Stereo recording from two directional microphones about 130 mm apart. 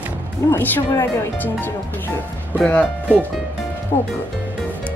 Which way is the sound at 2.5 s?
10° left (ahead or behind).